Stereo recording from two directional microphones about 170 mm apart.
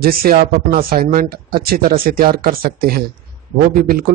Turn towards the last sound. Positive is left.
turn(degrees=-55)  # may be behind; listen again after turning